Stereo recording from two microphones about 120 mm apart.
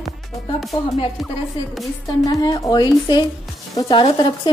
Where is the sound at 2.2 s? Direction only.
35° left (ahead or behind).